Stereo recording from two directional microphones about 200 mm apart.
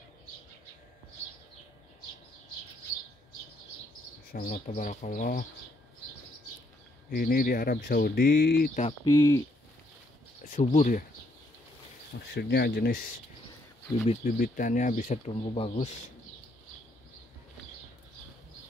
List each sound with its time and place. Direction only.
4.3 s speech: 45° left (ahead or behind)
7.1 s speech: 50° left (ahead or behind)
9.0 s speech: 20° left (ahead or behind)
10.4 s speech: 40° left (ahead or behind)
12.4 s speech: 55° left (ahead or behind)
14.0 s speech: 40° left (ahead or behind)